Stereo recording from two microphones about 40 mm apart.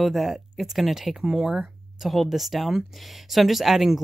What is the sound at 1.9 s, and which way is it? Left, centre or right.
Speech, centre.